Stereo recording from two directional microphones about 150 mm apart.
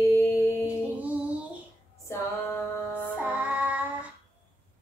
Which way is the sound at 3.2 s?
10° right (ahead or behind).